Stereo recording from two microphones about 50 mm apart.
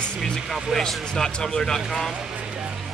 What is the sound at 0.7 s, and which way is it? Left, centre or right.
Speech, centre.